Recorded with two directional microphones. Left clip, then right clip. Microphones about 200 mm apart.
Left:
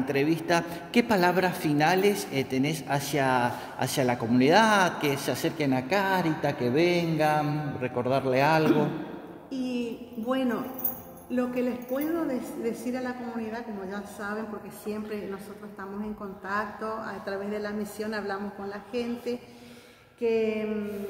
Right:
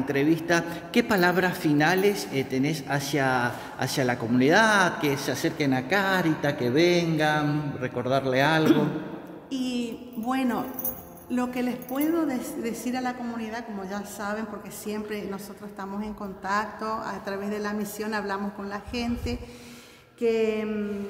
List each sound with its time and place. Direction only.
0.1 s a woman's voice: 10° left (ahead or behind)
9.5 s a man's voice: 45° right (ahead or behind)
20.2 s a sound: 25° right (ahead or behind)